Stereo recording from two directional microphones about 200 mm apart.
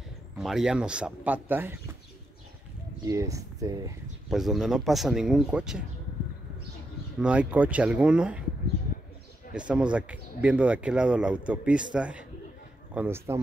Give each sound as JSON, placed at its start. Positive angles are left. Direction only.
{"t": 0.4, "sound": "speech", "side_deg": 0}
{"t": 3.1, "sound": "speech", "side_deg": -15}
{"t": 4.3, "sound": "speech", "side_deg": 0}
{"t": 7.2, "sound": "speech", "side_deg": -5}
{"t": 9.5, "sound": "speech", "side_deg": -5}